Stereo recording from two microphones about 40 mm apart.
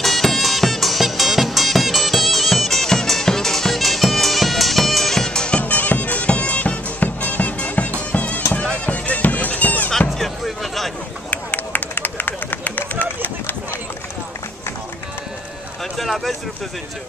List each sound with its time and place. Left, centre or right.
0.0 s music: centre
5.6 s bagpipes: left
8.8 s music: left
9.9 s a sound: centre
11.2 s run: left
16.0 s a sound: centre